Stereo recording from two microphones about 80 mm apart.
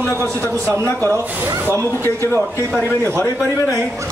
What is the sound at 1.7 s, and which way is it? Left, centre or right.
Speech, left.